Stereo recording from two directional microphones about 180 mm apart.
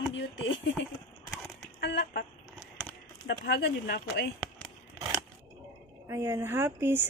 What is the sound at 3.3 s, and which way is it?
Speech, 75° left (ahead or behind).